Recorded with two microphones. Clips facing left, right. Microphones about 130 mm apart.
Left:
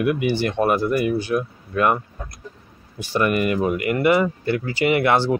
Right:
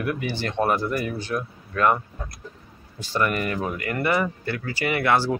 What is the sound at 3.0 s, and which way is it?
Speech, 15° left (ahead or behind).